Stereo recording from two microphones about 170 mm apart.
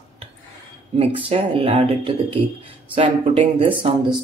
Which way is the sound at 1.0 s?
35° right (ahead or behind).